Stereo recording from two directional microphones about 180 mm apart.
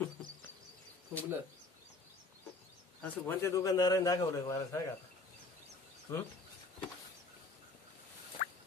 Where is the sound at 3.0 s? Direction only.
10° left (ahead or behind).